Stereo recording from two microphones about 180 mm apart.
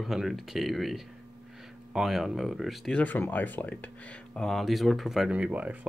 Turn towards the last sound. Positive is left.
turn(degrees=-10)  # may be behind; listen again after turning